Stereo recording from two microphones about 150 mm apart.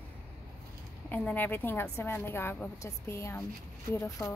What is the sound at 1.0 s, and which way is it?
A woman's voice, 10° left (ahead or behind).